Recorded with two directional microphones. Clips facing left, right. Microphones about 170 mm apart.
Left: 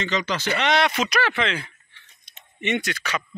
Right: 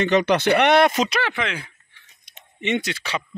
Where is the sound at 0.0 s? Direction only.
60° right (ahead or behind).